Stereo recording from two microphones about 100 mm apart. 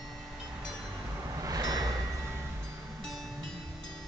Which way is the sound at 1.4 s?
40° right (ahead or behind).